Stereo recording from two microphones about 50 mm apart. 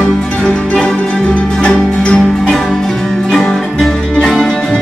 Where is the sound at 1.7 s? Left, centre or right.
Centre.